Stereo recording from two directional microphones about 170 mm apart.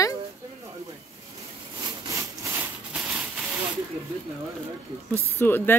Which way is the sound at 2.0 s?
15° right (ahead or behind).